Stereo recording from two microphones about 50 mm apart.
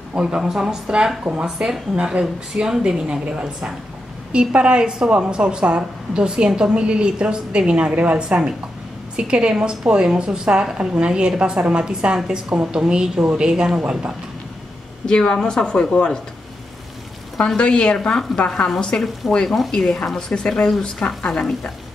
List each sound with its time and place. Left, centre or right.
0.1 s a woman's voice: centre
15.0 s speech: centre
17.6 s speech: left
19.2 s speech: centre
19.7 s speech: centre